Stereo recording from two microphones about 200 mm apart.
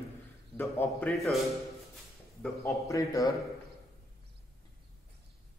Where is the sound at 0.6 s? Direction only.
10° left (ahead or behind).